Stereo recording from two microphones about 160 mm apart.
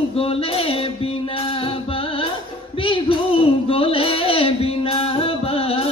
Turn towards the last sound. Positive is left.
turn(degrees=35)  # may be behind; listen again after turning